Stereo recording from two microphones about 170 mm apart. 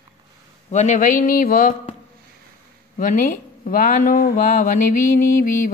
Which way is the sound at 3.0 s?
50° left (ahead or behind).